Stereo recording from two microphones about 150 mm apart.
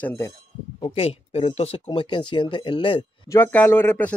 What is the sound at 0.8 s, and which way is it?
Speech, 40° left (ahead or behind).